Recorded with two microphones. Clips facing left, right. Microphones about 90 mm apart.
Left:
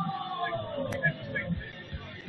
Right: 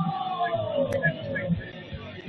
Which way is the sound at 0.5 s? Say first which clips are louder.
Right 8 dB; 5° left (ahead or behind).